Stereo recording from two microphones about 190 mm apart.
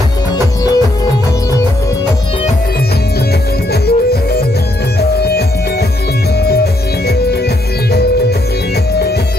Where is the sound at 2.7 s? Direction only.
55° left (ahead or behind).